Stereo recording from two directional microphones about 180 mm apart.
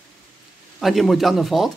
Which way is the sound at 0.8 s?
Centre (ahead or behind).